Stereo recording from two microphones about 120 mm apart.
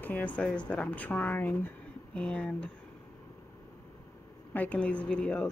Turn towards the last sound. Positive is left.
turn(degrees=10)  # may be behind; listen again after turning